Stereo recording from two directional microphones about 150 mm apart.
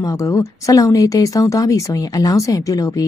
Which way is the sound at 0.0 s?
20° left (ahead or behind).